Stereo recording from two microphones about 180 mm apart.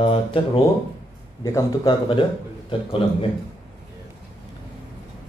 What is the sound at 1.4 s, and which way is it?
A man's voice, 20° left (ahead or behind).